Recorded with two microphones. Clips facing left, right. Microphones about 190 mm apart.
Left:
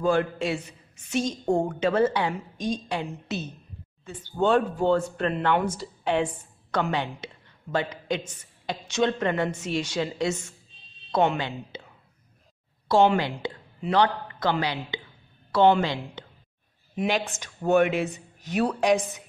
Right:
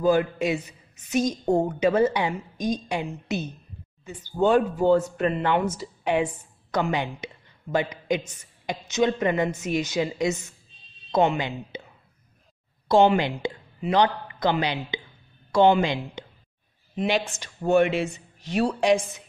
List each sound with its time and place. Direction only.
0.0 s a woman's voice: 10° right (ahead or behind)
12.8 s a woman's voice: 15° right (ahead or behind)
16.9 s speech: 5° left (ahead or behind)